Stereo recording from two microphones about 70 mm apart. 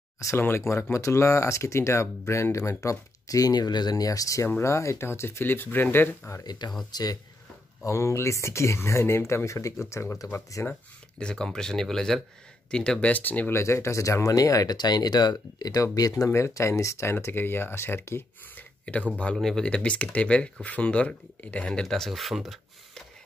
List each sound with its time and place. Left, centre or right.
0.4 s speech: left
6.4 s speech: left
7.8 s speech: left
10.7 s speech: centre
13.1 s speech: left
13.5 s speech: left
16.3 s speech: left
18.6 s a sound: centre
19.3 s speech: centre
21.8 s speech: centre